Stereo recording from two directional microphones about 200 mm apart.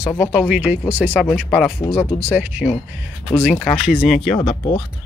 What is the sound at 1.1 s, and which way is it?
Speech, 5° left (ahead or behind).